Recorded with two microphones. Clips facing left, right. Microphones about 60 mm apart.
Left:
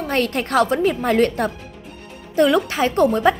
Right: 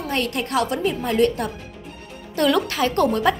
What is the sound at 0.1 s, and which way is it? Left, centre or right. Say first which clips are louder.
A woman's voice: left 4 dB; left.